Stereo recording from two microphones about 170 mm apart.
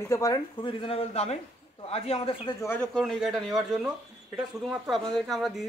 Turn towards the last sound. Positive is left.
turn(degrees=0)  # may be behind; listen again after turning